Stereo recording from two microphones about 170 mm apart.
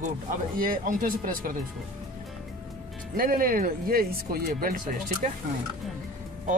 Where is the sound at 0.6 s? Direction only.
55° right (ahead or behind).